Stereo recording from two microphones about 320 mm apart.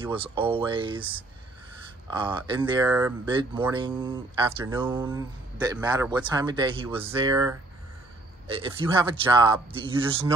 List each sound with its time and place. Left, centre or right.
0.0 s speech: centre
2.0 s speech: centre